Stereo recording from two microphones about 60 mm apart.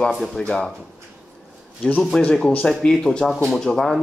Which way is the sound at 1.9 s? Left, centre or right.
Centre.